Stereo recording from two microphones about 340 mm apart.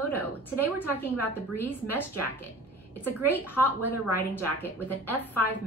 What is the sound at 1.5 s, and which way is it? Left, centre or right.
A woman's voice, centre.